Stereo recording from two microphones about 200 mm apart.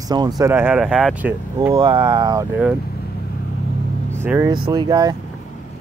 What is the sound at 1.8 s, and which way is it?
Speech, 25° right (ahead or behind).